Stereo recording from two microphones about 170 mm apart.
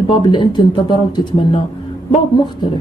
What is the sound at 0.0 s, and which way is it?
Speech, 30° left (ahead or behind).